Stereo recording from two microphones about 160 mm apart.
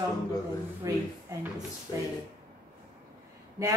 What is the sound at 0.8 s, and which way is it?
Speech, 20° right (ahead or behind).